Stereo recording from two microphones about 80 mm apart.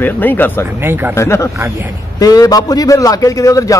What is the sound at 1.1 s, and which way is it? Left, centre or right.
Speech, left.